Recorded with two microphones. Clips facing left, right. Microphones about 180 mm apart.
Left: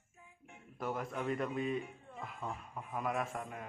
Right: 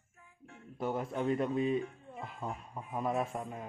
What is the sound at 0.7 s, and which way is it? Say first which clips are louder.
A man's voice: right 4 dB; 30° right (ahead or behind).